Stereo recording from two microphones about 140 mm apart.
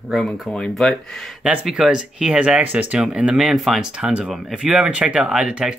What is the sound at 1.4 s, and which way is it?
Speech, 10° right (ahead or behind).